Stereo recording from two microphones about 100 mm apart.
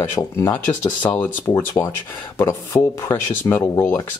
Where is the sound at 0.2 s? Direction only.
35° left (ahead or behind).